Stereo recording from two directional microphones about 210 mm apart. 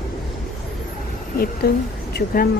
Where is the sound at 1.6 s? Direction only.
50° left (ahead or behind).